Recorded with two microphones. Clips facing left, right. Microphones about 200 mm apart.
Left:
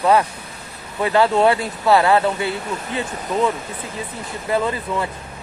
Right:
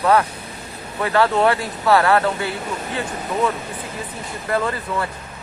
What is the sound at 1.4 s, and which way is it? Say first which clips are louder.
Speech: left 2 dB; 25° left (ahead or behind).